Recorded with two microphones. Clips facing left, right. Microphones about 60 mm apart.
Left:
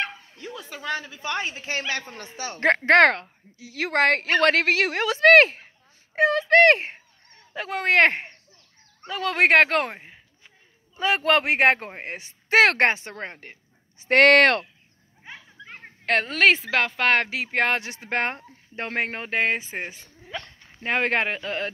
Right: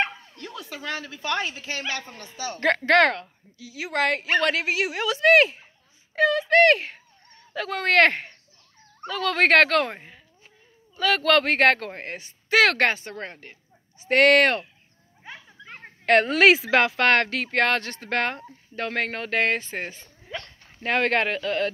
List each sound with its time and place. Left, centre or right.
0.4 s a woman's voice: centre
1.6 s a woman's voice: left
6.1 s speech: left
7.5 s a woman's voice: left
15.2 s speech: centre
20.3 s speech: centre
20.8 s speech: left